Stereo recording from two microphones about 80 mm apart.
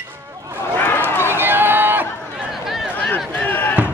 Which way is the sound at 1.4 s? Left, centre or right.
Right.